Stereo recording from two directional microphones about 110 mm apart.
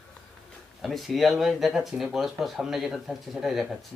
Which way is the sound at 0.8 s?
Centre (ahead or behind).